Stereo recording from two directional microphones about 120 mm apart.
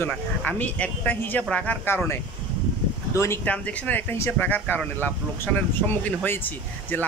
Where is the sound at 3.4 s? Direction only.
10° left (ahead or behind).